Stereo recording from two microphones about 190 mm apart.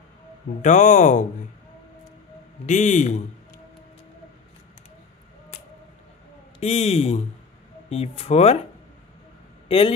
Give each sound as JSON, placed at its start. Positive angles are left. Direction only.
{"t": 0.6, "sound": "speech", "side_deg": 40}
{"t": 2.6, "sound": "speech", "side_deg": 40}
{"t": 6.6, "sound": "speech", "side_deg": 30}
{"t": 9.7, "sound": "a man's voice", "side_deg": 30}